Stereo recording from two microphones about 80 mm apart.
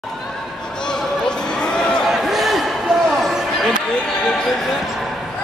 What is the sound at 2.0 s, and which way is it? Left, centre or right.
Basketball bounce, centre.